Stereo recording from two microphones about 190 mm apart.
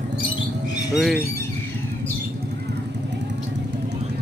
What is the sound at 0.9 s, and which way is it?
Speech, 5° right (ahead or behind).